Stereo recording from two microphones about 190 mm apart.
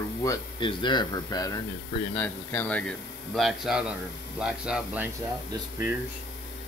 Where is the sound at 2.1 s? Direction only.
10° left (ahead or behind); by 5.1 s 5° right (ahead or behind).